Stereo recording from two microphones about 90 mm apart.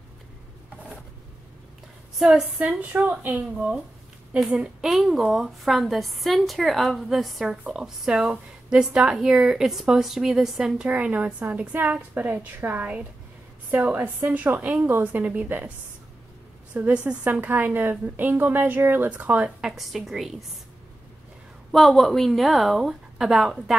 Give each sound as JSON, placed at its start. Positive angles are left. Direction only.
{"t": 2.1, "sound": "a woman's voice", "side_deg": -5}
{"t": 2.6, "sound": "a woman's voice", "side_deg": -15}
{"t": 16.7, "sound": "a woman's voice", "side_deg": -15}
{"t": 19.7, "sound": "speech", "side_deg": 0}
{"t": 21.7, "sound": "speech", "side_deg": 0}